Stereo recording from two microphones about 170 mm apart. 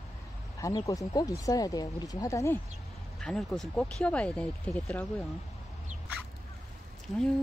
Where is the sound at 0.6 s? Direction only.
20° left (ahead or behind).